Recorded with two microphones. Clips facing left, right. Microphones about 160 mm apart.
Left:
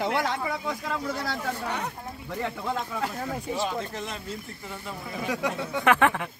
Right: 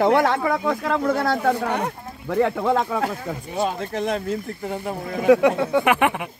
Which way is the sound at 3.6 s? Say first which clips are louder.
Right 7 dB; 55° right (ahead or behind).